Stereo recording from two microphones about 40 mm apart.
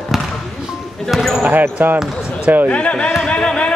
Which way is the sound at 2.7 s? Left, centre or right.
Left.